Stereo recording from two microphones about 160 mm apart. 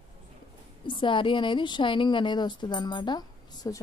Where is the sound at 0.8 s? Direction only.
30° left (ahead or behind).